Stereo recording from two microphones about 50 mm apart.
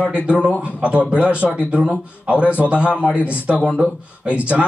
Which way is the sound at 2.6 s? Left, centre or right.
Right.